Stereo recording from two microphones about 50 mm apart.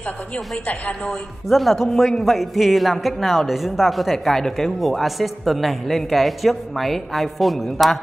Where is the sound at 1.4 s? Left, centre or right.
Centre.